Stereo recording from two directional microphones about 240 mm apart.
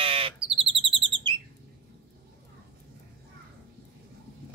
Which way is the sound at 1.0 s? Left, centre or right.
Centre.